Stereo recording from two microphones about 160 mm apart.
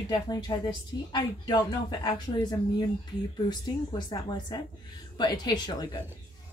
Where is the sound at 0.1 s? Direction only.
25° left (ahead or behind).